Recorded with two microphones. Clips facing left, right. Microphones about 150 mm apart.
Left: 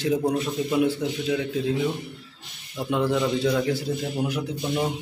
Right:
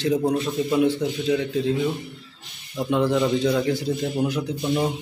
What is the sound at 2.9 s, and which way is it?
Speech, 5° left (ahead or behind).